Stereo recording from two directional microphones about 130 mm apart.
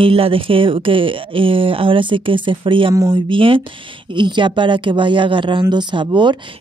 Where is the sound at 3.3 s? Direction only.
40° right (ahead or behind).